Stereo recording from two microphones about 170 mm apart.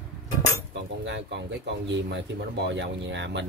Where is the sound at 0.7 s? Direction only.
90° right.